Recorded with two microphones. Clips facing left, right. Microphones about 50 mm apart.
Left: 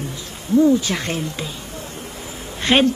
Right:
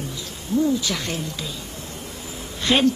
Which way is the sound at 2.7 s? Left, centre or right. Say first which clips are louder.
Left 4 dB; left.